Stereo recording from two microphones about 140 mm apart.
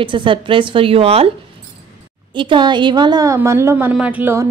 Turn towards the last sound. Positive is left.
turn(degrees=-15)  # may be behind; listen again after turning